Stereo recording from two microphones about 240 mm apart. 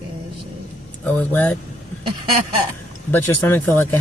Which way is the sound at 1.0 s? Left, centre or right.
Centre.